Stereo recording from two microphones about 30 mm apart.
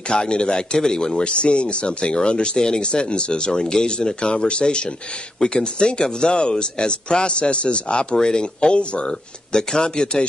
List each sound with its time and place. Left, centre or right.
0.1 s speech: left
1.2 s speech: left